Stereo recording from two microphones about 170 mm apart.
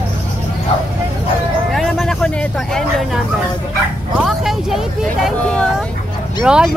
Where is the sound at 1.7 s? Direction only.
Centre (ahead or behind).